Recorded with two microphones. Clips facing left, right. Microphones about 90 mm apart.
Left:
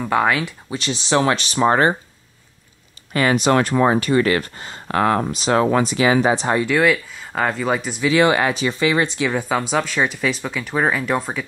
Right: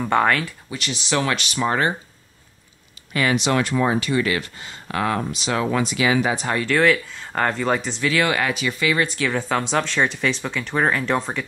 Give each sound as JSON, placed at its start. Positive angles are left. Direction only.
{"t": 0.0, "sound": "speech", "side_deg": 5}
{"t": 0.5, "sound": "speech", "side_deg": 25}
{"t": 3.1, "sound": "speech", "side_deg": 35}
{"t": 6.6, "sound": "speech", "side_deg": 10}
{"t": 8.1, "sound": "speech", "side_deg": 25}